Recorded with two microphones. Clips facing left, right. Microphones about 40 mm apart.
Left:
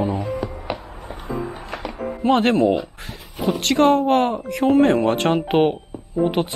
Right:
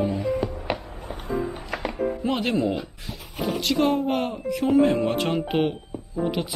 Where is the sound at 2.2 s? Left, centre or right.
Left.